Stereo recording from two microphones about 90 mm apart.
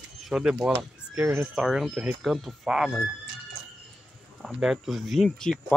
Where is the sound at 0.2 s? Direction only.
10° right (ahead or behind).